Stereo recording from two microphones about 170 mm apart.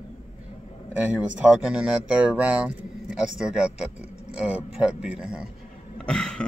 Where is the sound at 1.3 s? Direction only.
5° right (ahead or behind).